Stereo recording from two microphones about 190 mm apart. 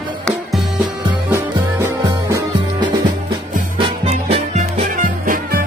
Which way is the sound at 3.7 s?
30° right (ahead or behind).